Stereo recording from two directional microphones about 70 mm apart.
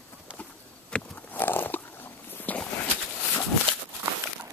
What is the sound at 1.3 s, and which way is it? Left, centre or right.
Biting, left.